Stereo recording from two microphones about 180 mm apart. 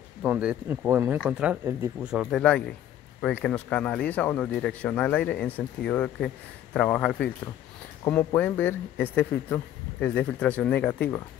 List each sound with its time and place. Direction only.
0.2 s speech: 5° right (ahead or behind)